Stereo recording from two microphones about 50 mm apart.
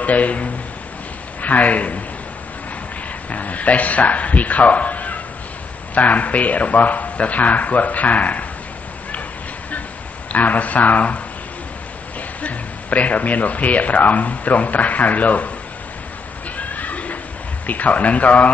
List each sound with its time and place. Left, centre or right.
0.0 s a man's voice: left
3.3 s speech: left
10.3 s speech: left
12.4 s speech: left
16.5 s neigh: left
17.6 s speech: left